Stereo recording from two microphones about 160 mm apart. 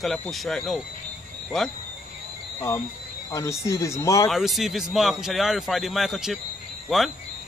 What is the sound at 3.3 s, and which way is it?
Speech, 20° left (ahead or behind).